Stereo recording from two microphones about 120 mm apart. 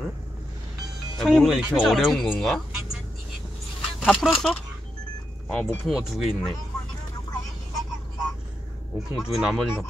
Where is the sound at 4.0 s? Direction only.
5° left (ahead or behind).